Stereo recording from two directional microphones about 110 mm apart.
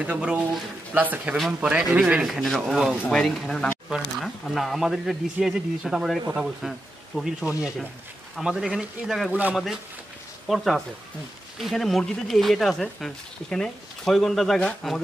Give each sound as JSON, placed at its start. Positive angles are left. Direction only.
{"t": 0.0, "sound": "speech", "side_deg": -10}
{"t": 10.4, "sound": "speech", "side_deg": 0}